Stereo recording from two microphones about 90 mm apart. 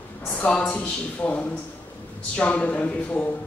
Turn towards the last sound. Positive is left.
turn(degrees=15)  # may be behind; listen again after turning